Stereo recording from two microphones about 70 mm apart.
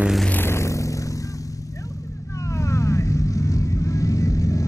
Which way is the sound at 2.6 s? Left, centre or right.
Left.